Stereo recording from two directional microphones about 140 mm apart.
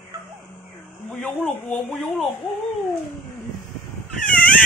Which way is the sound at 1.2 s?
5° left (ahead or behind).